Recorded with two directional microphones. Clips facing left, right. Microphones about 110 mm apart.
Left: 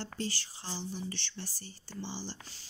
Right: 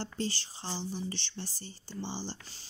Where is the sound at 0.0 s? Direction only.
25° right (ahead or behind).